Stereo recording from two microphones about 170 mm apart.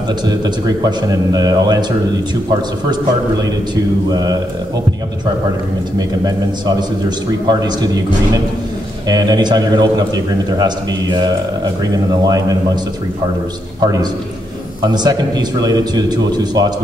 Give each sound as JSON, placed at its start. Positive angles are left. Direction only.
{"t": 0.8, "sound": "a man's voice", "side_deg": -25}
{"t": 4.1, "sound": "a man's voice", "side_deg": -20}
{"t": 5.9, "sound": "a man's voice", "side_deg": -25}
{"t": 9.0, "sound": "a man's voice", "side_deg": -25}
{"t": 14.8, "sound": "a man's voice", "side_deg": -25}